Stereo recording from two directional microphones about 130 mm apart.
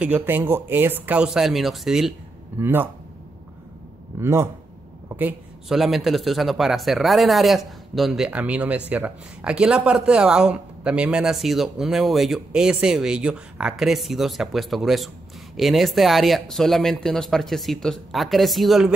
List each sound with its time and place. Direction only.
0.0 s speech: 15° right (ahead or behind)
2.6 s speech: 15° right (ahead or behind)
4.2 s speech: 20° right (ahead or behind)
5.7 s speech: 5° right (ahead or behind)